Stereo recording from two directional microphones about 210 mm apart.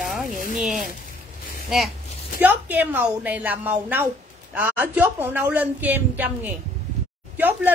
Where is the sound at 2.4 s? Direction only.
10° right (ahead or behind).